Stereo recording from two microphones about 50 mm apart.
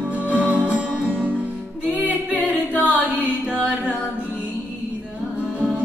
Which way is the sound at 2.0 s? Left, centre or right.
Right.